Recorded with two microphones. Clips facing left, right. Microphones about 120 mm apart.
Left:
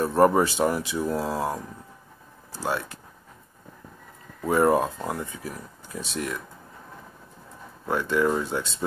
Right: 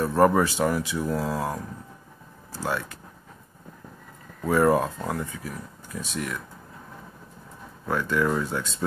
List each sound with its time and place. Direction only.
0.0 s speech: 25° left (ahead or behind)
4.5 s speech: 20° left (ahead or behind)
7.9 s speech: 25° left (ahead or behind)